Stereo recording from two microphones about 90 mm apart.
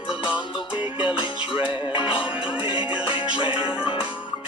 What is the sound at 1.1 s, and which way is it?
Music, 60° left (ahead or behind).